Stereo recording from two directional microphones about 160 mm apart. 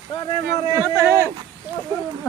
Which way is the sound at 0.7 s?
15° right (ahead or behind).